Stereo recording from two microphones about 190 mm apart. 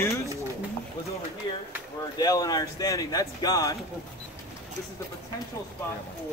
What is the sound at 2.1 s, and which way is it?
Speech, 20° left (ahead or behind).